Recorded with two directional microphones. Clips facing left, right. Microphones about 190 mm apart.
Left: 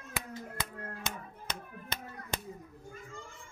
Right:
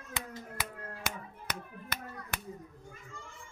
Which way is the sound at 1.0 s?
25° left (ahead or behind).